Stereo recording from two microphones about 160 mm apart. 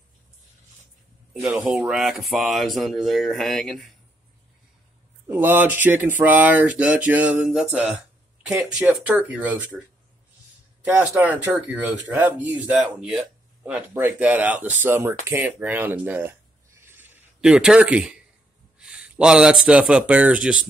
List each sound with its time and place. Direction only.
1.4 s speech: 5° right (ahead or behind)
5.3 s speech: 10° right (ahead or behind)